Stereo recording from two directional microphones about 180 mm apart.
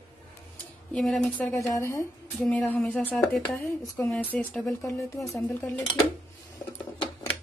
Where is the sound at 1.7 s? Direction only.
15° left (ahead or behind).